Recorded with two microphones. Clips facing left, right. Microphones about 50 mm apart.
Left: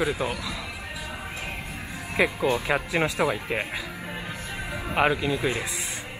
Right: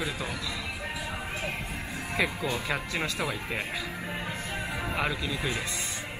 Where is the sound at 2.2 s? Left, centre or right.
Left.